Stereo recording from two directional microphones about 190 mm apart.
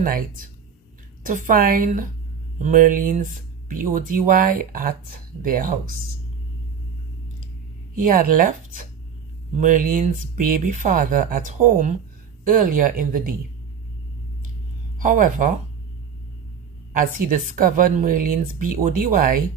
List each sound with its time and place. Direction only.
0.0 s speech: 45° right (ahead or behind)
8.0 s speech: 45° right (ahead or behind)
15.0 s speech: 45° right (ahead or behind)
16.9 s speech: 45° right (ahead or behind)